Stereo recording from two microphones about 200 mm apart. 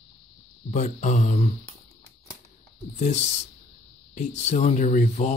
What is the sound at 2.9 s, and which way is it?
Speech, 35° left (ahead or behind).